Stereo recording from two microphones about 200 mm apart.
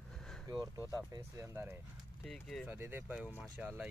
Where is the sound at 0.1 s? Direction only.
5° left (ahead or behind).